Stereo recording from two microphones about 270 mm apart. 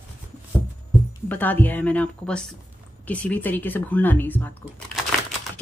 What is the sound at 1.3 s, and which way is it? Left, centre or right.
A woman's voice, centre.